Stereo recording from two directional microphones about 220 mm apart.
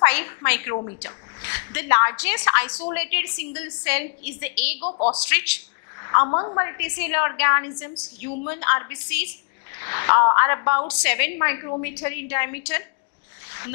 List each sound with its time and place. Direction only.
0.0 s a woman's voice: 10° left (ahead or behind)
4.7 s a woman's voice: 30° left (ahead or behind)
5.1 s a woman's voice: 10° left (ahead or behind)
5.9 s a sound: 20° left (ahead or behind)
6.2 s a woman's voice: 25° left (ahead or behind)